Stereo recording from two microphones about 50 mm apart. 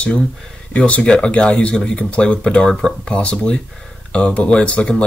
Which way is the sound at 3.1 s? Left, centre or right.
Left.